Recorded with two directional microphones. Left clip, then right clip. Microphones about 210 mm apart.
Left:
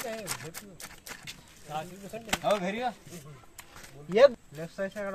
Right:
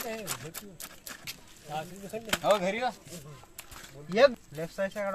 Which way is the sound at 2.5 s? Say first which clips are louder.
Right 2 dB; 40° right (ahead or behind).